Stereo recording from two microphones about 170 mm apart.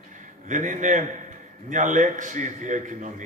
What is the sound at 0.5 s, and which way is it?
A man's voice, 50° right (ahead or behind).